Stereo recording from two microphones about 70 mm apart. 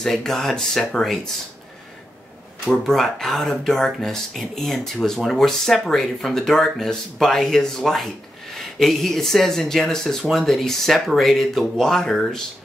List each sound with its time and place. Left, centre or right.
0.0 s speech: centre
2.7 s speech: centre